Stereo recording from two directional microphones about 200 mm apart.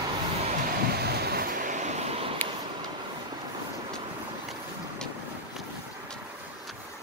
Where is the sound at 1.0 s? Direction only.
55° right (ahead or behind); by 2.3 s 35° right (ahead or behind).